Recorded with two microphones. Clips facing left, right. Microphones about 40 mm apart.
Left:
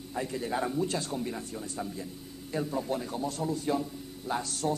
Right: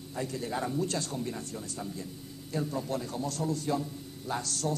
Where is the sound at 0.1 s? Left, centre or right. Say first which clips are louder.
Left 2 dB; centre.